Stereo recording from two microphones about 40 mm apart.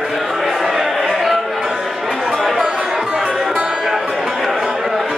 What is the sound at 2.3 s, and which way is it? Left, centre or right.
Music, centre.